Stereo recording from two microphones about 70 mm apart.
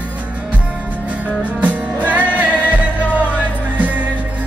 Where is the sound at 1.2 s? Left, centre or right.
Right.